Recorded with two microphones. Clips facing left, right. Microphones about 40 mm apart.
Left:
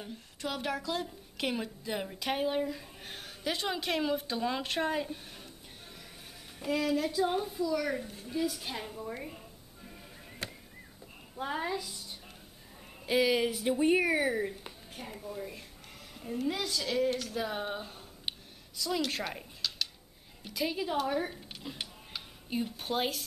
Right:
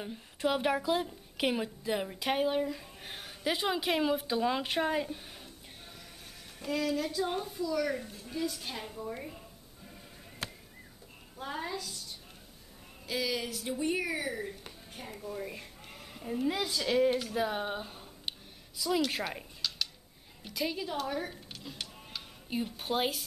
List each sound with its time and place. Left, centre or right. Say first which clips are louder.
0.0 s a woman's voice: right 6 dB; centre
1.0 s a woman's voice: right 3 dB; centre
6.6 s a woman's voice: left 2 dB; centre
11.3 s a woman's voice: left 3 dB; centre
15.0 s a woman's voice: even; centre
15.3 s a woman's voice: right 2 dB; centre
22.5 s a woman's voice: even; centre